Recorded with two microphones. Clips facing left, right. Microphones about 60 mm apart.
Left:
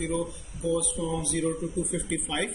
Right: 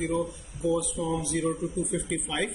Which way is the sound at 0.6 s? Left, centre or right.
Right.